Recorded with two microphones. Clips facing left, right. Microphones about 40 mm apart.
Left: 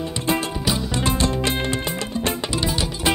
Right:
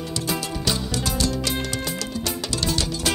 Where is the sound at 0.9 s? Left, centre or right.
Left.